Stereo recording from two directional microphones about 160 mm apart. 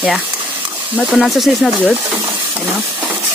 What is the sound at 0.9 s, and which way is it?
Speech, centre (ahead or behind).